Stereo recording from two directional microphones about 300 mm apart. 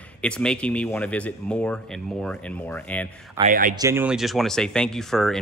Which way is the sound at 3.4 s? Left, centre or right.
Right.